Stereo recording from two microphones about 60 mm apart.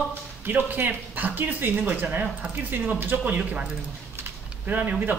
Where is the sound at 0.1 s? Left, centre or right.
Right.